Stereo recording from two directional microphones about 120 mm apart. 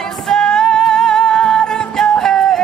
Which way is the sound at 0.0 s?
5° left (ahead or behind).